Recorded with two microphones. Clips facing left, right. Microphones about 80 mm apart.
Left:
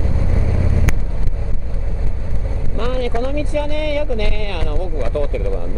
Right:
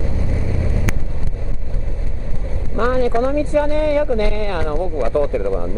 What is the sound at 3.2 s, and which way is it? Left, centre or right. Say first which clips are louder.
Speech: right 4 dB; right.